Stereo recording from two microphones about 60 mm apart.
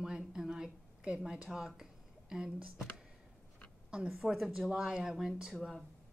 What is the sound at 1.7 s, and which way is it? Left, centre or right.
Speech, centre.